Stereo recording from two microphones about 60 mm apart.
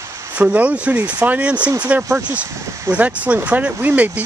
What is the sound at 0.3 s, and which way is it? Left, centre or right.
Speech, right.